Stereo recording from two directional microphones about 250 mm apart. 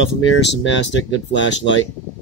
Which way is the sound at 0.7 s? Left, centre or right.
Left.